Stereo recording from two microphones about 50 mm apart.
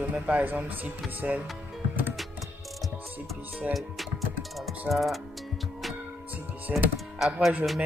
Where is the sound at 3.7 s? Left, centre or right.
Centre.